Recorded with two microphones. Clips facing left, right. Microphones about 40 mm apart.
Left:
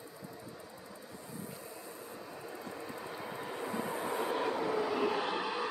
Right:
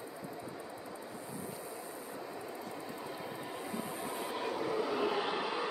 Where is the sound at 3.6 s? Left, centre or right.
Left.